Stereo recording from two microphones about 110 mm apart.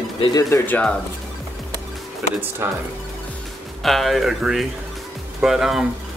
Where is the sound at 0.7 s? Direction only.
15° left (ahead or behind).